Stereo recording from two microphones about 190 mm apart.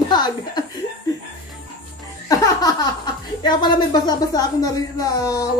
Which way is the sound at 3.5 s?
20° left (ahead or behind).